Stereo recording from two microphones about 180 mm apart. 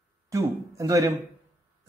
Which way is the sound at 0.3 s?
20° right (ahead or behind).